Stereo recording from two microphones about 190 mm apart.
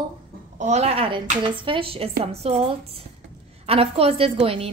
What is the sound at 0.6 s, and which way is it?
A woman's voice, 35° right (ahead or behind).